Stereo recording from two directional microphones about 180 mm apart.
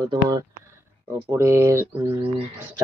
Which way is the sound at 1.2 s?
15° right (ahead or behind).